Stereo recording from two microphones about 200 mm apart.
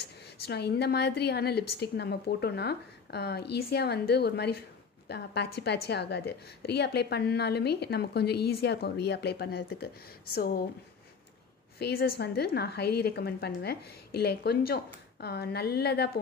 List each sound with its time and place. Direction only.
0.0 s a woman's voice: 55° left (ahead or behind)
11.8 s a woman's voice: 50° left (ahead or behind)